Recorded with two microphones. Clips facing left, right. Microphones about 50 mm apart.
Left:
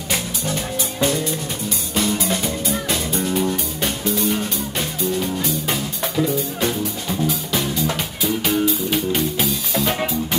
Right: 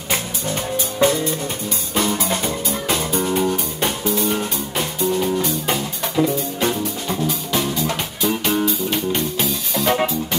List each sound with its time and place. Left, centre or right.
0.1 s music: right
3.3 s music: centre